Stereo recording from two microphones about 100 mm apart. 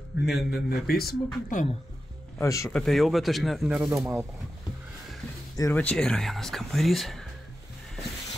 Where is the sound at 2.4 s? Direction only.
30° left (ahead or behind).